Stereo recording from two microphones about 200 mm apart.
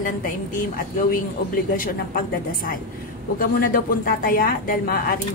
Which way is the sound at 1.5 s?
45° left (ahead or behind).